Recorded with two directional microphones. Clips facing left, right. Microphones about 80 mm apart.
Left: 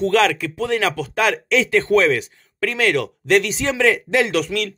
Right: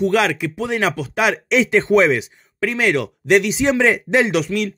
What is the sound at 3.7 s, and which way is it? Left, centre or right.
Speech, right.